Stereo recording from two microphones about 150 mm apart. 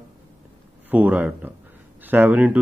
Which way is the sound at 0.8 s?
10° right (ahead or behind).